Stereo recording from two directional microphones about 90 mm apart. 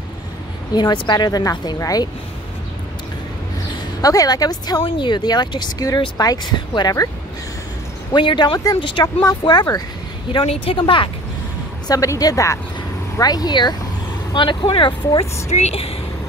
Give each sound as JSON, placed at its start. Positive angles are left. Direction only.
{"t": 0.7, "sound": "a woman's voice", "side_deg": 55}
{"t": 4.0, "sound": "speech", "side_deg": 45}
{"t": 4.8, "sound": "speech", "side_deg": 60}
{"t": 8.1, "sound": "speech", "side_deg": 60}
{"t": 9.0, "sound": "speech", "side_deg": 40}
{"t": 10.3, "sound": "speech", "side_deg": 90}
{"t": 11.9, "sound": "a woman's voice", "side_deg": 40}
{"t": 14.3, "sound": "speech", "side_deg": 60}